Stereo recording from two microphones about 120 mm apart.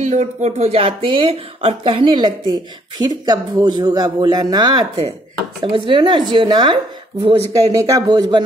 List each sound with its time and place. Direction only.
0.0 s speech: 75° right (ahead or behind); by 8.5 s 35° right (ahead or behind)